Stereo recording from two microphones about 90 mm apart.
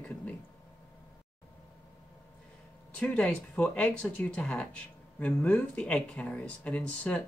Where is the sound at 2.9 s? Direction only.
10° left (ahead or behind).